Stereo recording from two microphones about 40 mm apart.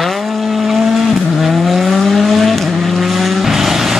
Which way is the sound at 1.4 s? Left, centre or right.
Centre.